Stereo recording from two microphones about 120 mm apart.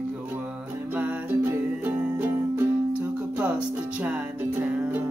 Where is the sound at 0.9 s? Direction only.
15° right (ahead or behind).